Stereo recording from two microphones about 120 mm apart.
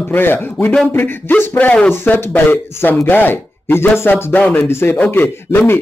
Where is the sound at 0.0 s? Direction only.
20° left (ahead or behind).